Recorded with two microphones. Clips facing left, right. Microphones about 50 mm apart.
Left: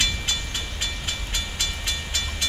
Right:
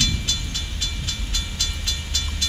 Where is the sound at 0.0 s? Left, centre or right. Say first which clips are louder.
Even; left.